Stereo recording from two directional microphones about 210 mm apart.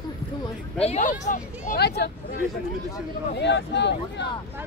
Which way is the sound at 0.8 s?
35° left (ahead or behind).